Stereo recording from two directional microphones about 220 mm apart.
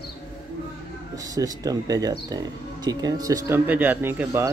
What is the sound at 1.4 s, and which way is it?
A man's voice, 15° right (ahead or behind).